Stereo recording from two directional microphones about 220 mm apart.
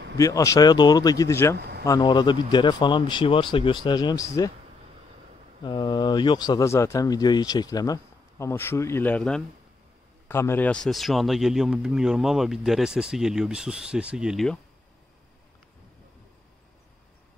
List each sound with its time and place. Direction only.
0.2 s speech: 15° left (ahead or behind)
5.6 s a man's voice: 20° left (ahead or behind); by 14.6 s centre (ahead or behind)